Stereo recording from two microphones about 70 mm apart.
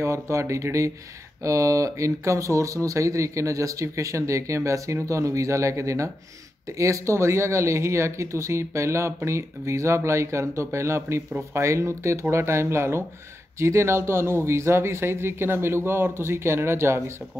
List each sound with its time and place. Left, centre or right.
0.0 s speech: right